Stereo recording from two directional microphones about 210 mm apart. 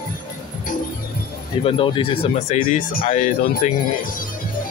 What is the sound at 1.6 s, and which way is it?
Speech, 25° left (ahead or behind).